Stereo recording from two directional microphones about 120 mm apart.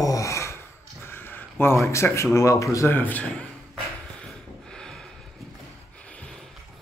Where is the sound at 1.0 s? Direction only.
20° left (ahead or behind).